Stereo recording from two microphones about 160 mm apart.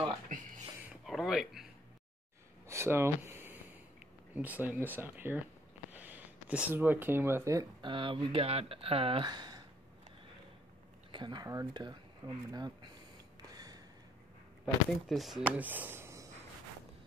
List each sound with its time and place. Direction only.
0.8 s a sound: centre (ahead or behind)
2.7 s a sound: 15° right (ahead or behind)
4.4 s speech: 10° right (ahead or behind)
7.8 s speech: 30° right (ahead or behind)
11.1 s speech: 30° right (ahead or behind)
13.4 s gasp: 25° right (ahead or behind)
15.0 s speech: centre (ahead or behind)